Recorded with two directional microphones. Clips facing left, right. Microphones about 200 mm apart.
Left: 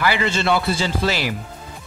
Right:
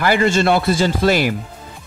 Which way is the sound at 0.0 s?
45° right (ahead or behind).